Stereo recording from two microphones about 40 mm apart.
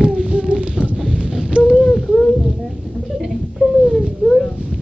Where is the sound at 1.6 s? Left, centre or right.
Centre.